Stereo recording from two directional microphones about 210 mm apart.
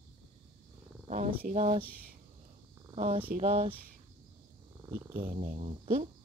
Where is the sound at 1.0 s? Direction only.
35° right (ahead or behind).